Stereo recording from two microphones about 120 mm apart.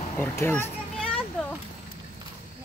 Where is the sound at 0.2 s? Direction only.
20° left (ahead or behind).